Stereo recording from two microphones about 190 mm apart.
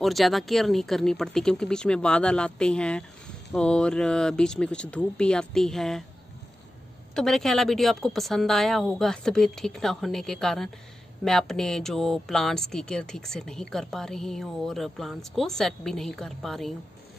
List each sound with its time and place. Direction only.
0.0 s speech: centre (ahead or behind)
7.2 s speech: centre (ahead or behind)